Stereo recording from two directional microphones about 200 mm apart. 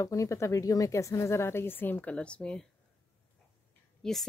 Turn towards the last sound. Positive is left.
turn(degrees=0)  # may be behind; listen again after turning